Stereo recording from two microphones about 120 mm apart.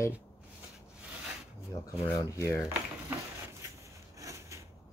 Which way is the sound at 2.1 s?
30° left (ahead or behind).